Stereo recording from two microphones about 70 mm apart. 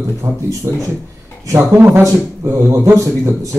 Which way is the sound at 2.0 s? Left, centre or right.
Right.